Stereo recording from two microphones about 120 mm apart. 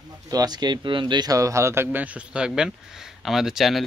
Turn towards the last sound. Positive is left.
turn(degrees=0)  # may be behind; listen again after turning